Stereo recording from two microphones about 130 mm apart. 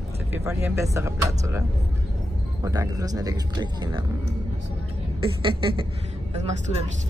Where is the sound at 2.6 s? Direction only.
25° right (ahead or behind).